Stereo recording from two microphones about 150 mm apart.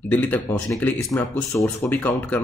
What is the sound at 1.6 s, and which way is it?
Speech, 10° left (ahead or behind).